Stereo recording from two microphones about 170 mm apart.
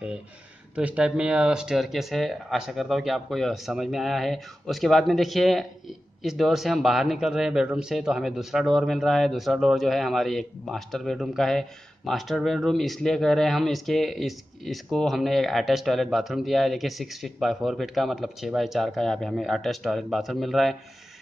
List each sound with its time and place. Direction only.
0.7 s speech: 5° right (ahead or behind)